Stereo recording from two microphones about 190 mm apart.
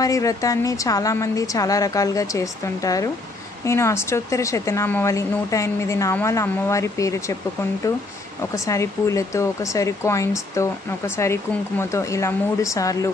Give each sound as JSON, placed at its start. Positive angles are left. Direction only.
{"t": 0.0, "sound": "a woman's voice", "side_deg": 15}
{"t": 8.4, "sound": "a woman's voice", "side_deg": 15}